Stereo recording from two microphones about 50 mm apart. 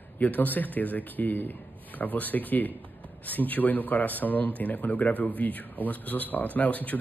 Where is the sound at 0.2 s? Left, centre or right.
Left.